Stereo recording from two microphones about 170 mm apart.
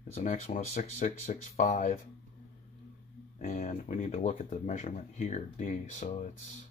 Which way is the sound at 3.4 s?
45° left (ahead or behind).